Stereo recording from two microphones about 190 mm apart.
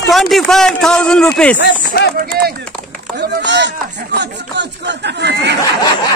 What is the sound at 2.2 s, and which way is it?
Speech, 55° right (ahead or behind).